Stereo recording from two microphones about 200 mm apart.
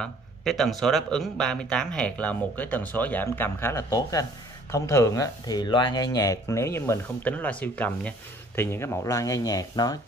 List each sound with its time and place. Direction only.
0.0 s speech: centre (ahead or behind); by 9.9 s 20° left (ahead or behind)